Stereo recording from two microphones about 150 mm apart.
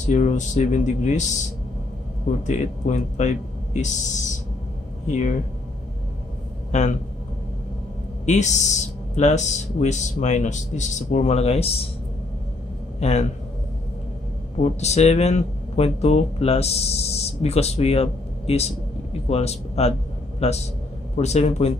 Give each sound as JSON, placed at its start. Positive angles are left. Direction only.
{"t": 0.0, "sound": "speech", "side_deg": 55}
{"t": 2.4, "sound": "speech", "side_deg": 50}
{"t": 6.7, "sound": "speech", "side_deg": 50}
{"t": 8.3, "sound": "speech", "side_deg": 50}
{"t": 13.0, "sound": "speech", "side_deg": 45}
{"t": 14.6, "sound": "a man's voice", "side_deg": 50}